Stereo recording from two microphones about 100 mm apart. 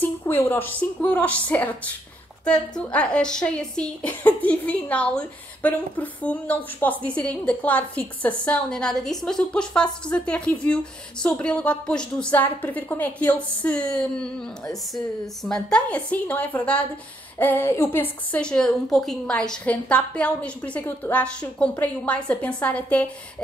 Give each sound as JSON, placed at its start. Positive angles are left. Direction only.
{"t": 0.0, "sound": "a woman's voice", "side_deg": 20}
{"t": 18.3, "sound": "a woman's voice", "side_deg": 10}